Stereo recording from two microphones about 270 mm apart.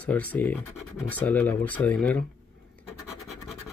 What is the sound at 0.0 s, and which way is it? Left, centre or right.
Speech, centre.